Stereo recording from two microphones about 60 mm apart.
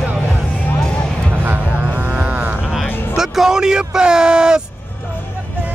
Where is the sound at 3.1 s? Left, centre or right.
Centre.